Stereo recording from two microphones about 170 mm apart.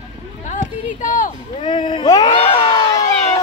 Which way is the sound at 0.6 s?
50° left (ahead or behind).